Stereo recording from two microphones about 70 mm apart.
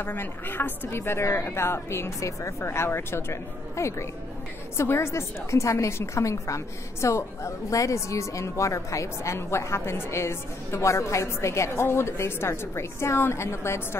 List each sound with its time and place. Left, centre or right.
0.0 s a woman's voice: left